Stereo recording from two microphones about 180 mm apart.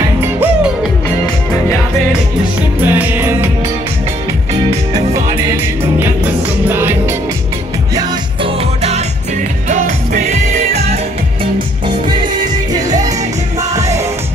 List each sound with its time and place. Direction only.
2.8 s music: 10° right (ahead or behind)
6.7 s music: 10° right (ahead or behind); by 11.0 s 40° right (ahead or behind)